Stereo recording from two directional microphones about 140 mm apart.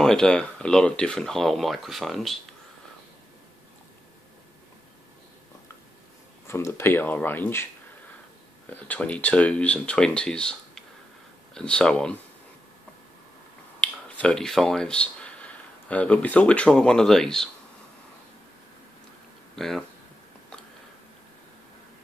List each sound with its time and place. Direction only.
0.0 s speech: 5° left (ahead or behind)
6.4 s speech: 15° left (ahead or behind)
8.8 s speech: 10° left (ahead or behind)
13.7 s speech: 10° left (ahead or behind)
19.5 s speech: centre (ahead or behind)